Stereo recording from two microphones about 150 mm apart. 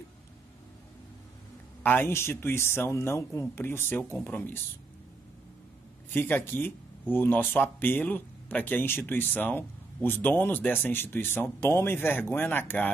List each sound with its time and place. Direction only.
1.8 s speech: 15° left (ahead or behind)
6.1 s speech: 15° left (ahead or behind)